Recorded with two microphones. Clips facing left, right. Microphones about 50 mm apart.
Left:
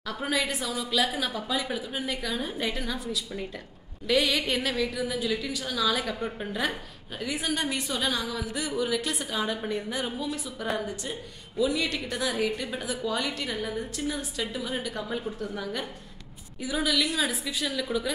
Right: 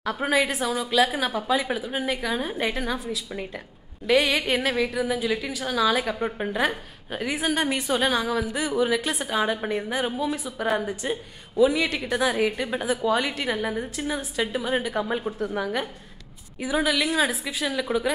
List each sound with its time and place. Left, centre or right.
0.0 s a woman's voice: right
4.1 s a woman's voice: right